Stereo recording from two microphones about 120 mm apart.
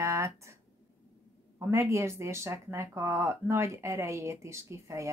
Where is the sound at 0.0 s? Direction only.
25° right (ahead or behind).